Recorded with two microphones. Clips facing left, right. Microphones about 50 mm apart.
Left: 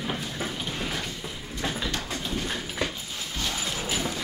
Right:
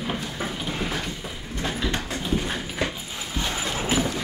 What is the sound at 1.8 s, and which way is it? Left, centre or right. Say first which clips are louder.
Dog: right 4 dB; right.